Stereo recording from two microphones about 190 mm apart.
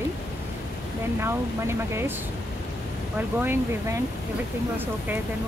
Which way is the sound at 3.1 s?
10° right (ahead or behind).